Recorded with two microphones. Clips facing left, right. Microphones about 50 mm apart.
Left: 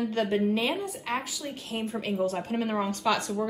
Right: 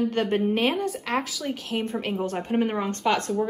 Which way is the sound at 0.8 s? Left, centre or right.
Right.